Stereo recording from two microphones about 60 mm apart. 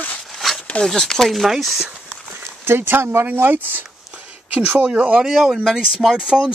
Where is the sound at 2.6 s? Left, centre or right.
Right; by 5.2 s centre.